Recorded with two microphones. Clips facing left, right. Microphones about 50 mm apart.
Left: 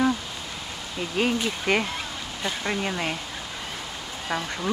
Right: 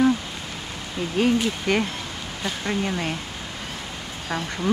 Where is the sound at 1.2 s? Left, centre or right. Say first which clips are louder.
Right 3 dB; centre.